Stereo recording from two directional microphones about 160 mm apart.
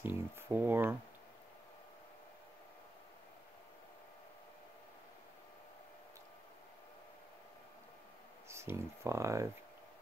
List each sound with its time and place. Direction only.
0.0 s speech: 10° right (ahead or behind)
8.5 s speech: 15° right (ahead or behind)